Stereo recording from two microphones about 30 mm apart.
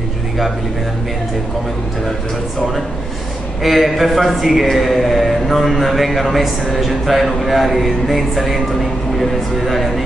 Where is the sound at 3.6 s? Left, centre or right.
Centre.